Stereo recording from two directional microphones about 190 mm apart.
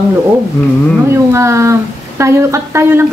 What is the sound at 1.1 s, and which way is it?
A woman's voice, 15° right (ahead or behind).